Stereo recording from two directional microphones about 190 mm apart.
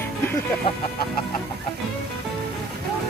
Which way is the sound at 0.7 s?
25° left (ahead or behind).